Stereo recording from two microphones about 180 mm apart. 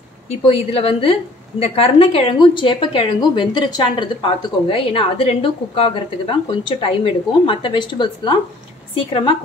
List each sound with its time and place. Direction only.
0.3 s a woman's voice: 35° left (ahead or behind)